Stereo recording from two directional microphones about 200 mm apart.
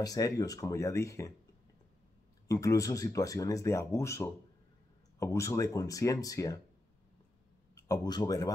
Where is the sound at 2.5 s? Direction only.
15° left (ahead or behind).